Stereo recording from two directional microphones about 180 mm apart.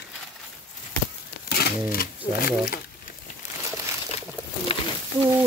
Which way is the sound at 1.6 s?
55° left (ahead or behind).